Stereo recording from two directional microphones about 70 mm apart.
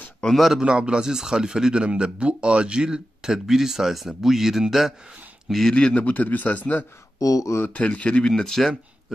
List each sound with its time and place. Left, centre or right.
0.2 s a man's voice: centre
0.7 s a man's voice: centre
5.8 s a man's voice: centre
7.2 s speech: left
7.7 s speech: centre